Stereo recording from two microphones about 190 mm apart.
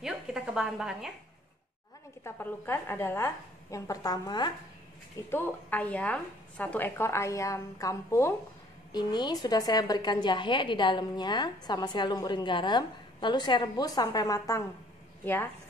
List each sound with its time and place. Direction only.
0.0 s a sound: centre (ahead or behind)
2.2 s a woman's voice: 10° left (ahead or behind)
5.3 s a woman's voice: 10° left (ahead or behind)